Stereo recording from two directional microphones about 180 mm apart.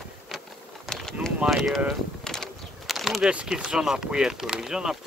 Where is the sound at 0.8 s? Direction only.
5° left (ahead or behind).